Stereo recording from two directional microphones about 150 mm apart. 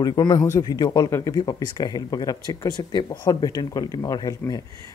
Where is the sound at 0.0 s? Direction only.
25° left (ahead or behind).